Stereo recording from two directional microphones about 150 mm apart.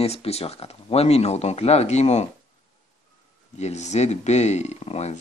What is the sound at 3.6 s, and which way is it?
Speech, 50° left (ahead or behind).